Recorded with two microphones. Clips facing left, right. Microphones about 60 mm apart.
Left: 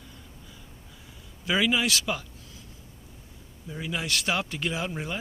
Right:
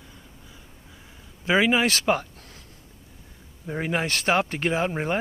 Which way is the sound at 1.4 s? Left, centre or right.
Right.